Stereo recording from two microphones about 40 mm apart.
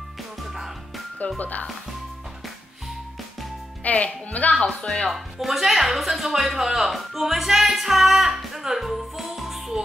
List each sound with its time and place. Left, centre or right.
0.5 s music: centre
1.4 s speech: left
3.9 s speech: left
4.6 s speech: centre
5.1 s speech: centre